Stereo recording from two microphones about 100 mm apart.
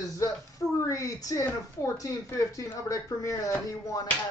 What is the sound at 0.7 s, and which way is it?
Speech, 30° left (ahead or behind).